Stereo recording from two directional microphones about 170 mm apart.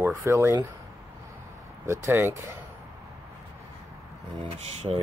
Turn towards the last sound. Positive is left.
turn(degrees=-40)  # may be behind; listen again after turning